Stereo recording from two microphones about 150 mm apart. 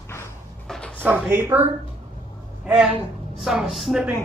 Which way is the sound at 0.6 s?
5° left (ahead or behind).